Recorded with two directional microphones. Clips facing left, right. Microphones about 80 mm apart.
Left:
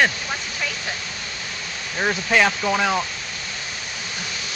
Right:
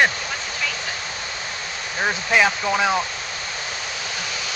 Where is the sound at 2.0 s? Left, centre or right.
Centre.